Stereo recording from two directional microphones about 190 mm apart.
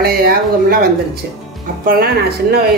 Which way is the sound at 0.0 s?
50° right (ahead or behind).